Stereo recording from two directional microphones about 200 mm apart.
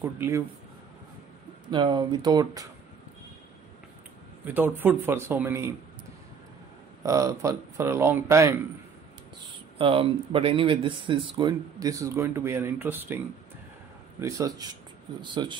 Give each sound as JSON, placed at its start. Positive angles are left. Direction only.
{"t": 0.0, "sound": "speech", "side_deg": -10}
{"t": 1.7, "sound": "speech", "side_deg": -25}
{"t": 4.5, "sound": "speech", "side_deg": -10}
{"t": 7.0, "sound": "speech", "side_deg": -15}
{"t": 9.8, "sound": "speech", "side_deg": -25}
{"t": 14.2, "sound": "speech", "side_deg": -15}